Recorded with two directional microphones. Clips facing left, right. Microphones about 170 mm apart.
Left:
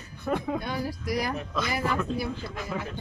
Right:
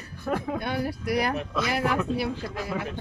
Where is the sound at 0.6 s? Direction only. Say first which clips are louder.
Right 3 dB; 65° right (ahead or behind).